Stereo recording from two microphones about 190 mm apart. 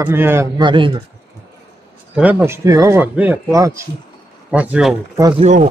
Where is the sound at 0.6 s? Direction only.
25° right (ahead or behind).